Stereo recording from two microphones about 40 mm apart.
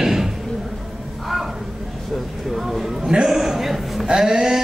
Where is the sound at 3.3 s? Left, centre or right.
Centre.